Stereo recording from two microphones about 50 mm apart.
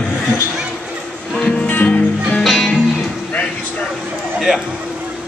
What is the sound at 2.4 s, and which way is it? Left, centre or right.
Music, centre.